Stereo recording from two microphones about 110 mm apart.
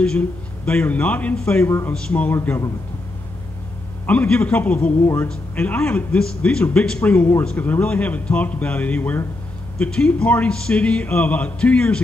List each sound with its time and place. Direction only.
0.0 s speech: 10° left (ahead or behind)
1.6 s a man's voice: 20° left (ahead or behind)
4.0 s a man's voice: 15° left (ahead or behind)
6.1 s speech: 5° left (ahead or behind)